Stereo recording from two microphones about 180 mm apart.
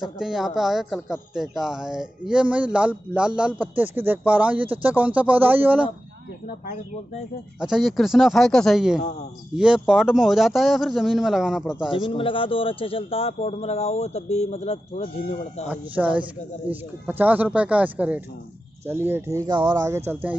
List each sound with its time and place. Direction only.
0.0 s a man's voice: centre (ahead or behind)
7.6 s a man's voice: centre (ahead or behind)
11.9 s a man's voice: 30° left (ahead or behind)
15.7 s speech: 10° right (ahead or behind)